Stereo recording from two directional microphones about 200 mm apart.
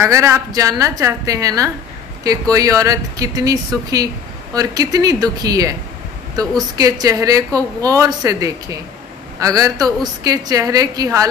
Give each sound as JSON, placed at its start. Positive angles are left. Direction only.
{"t": 0.0, "sound": "a woman's voice", "side_deg": -15}
{"t": 6.8, "sound": "a woman's voice", "side_deg": -15}